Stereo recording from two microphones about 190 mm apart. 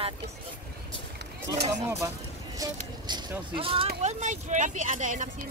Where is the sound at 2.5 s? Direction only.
20° right (ahead or behind).